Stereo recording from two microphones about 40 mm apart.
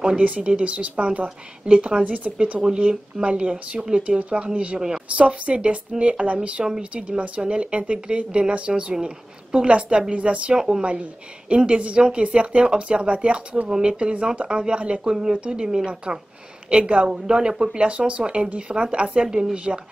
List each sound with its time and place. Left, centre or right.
0.2 s a woman's voice: right
1.7 s a woman's voice: right
2.0 s a woman's voice: right
2.6 s a woman's voice: centre
3.3 s a woman's voice: right
4.7 s a woman's voice: centre
5.1 s a woman's voice: right
9.0 s a sound: right
9.7 s a woman's voice: right
13.7 s a woman's voice: centre
13.9 s a woman's voice: right